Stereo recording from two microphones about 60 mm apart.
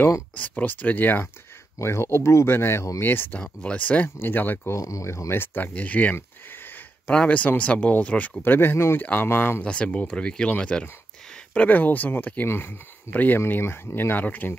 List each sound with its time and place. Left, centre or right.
0.4 s speech: left
1.8 s speech: left
4.7 s speech: left
6.1 s a sound: left
7.1 s speech: left
8.4 s speech: left
9.6 s speech: centre
12.4 s speech: left
13.5 s speech: left